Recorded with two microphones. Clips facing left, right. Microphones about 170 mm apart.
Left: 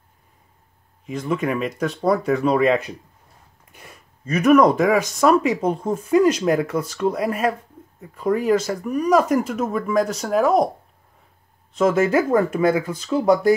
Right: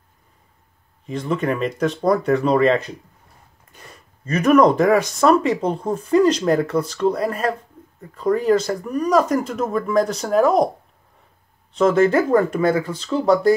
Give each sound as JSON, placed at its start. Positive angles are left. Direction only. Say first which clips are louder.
{"t": 1.0, "sound": "speech", "louder": "right 1 dB", "side_deg": 5}
{"t": 11.7, "sound": "speech", "louder": "right 2 dB", "side_deg": 5}